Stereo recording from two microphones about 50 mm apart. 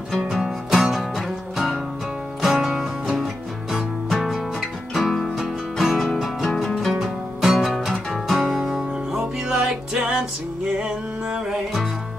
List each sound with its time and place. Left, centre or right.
0.3 s music: centre